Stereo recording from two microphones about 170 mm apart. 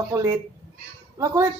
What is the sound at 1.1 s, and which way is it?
Speech, 20° right (ahead or behind).